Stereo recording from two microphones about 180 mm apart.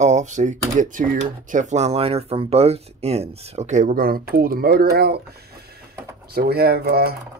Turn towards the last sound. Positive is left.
turn(degrees=-60)  # may be behind; listen again after turning